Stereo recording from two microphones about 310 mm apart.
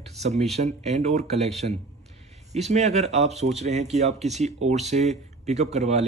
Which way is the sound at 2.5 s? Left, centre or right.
Right.